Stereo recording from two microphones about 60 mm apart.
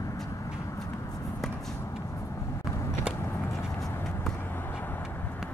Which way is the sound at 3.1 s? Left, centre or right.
Centre.